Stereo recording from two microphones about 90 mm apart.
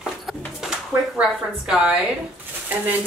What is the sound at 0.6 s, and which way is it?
Music, 10° right (ahead or behind).